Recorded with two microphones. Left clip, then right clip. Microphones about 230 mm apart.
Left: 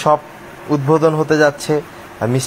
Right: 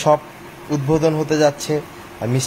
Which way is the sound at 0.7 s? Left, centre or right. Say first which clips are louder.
Left 4 dB; centre.